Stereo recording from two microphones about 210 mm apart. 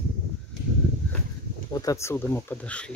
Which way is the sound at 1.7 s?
15° left (ahead or behind).